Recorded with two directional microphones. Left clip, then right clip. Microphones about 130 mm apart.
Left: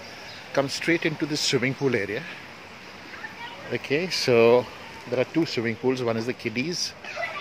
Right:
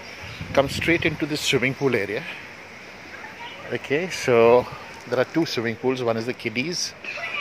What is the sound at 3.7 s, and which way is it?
Speech, 25° left (ahead or behind).